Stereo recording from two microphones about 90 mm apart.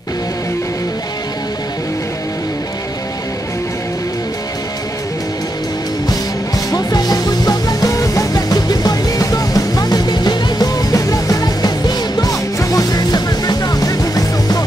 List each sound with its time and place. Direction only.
6.7 s music: 45° left (ahead or behind)